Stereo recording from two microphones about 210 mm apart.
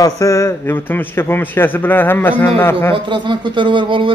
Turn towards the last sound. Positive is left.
turn(degrees=-25)  # may be behind; listen again after turning